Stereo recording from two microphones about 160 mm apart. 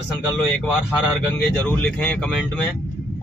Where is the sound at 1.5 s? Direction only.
10° left (ahead or behind).